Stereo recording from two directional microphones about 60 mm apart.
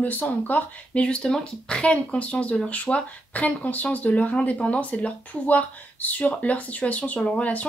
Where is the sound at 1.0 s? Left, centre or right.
Centre.